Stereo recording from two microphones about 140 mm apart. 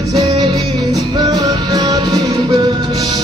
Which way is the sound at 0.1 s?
30° right (ahead or behind).